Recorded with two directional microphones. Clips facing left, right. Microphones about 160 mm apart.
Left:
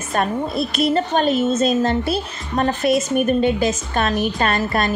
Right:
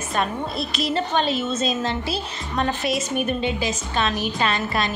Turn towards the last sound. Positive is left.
turn(degrees=50)  # may be behind; listen again after turning